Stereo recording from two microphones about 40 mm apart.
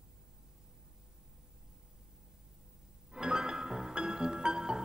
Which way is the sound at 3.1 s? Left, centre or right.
Centre.